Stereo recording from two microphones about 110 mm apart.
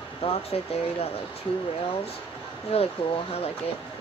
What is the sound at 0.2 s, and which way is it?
Speech, 60° left (ahead or behind).